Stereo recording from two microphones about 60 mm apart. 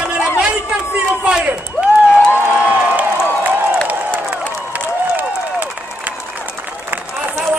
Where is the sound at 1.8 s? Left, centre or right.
Left.